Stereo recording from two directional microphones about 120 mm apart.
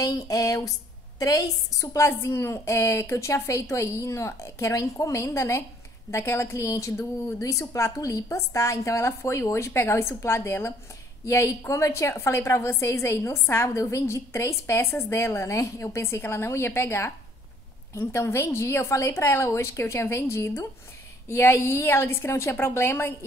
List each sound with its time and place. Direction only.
0.0 s a woman's voice: 30° left (ahead or behind)